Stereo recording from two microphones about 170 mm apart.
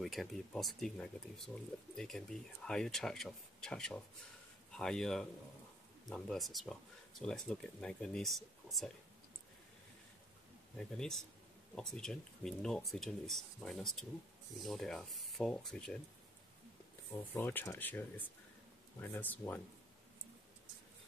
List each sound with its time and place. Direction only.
0.0 s speech: centre (ahead or behind)
10.8 s speech: 5° left (ahead or behind)
17.3 s speech: 10° left (ahead or behind)